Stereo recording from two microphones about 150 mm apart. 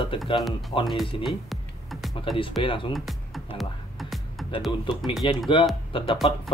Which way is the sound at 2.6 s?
35° left (ahead or behind).